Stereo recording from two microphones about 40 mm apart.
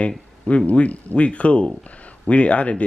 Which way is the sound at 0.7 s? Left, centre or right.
Left.